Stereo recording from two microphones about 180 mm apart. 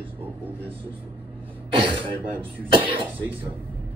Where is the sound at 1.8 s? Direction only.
30° right (ahead or behind).